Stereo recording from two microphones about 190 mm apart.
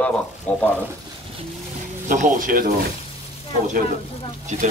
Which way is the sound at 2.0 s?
40° right (ahead or behind).